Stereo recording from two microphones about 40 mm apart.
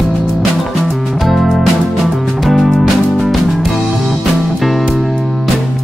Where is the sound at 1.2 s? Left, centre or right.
Centre.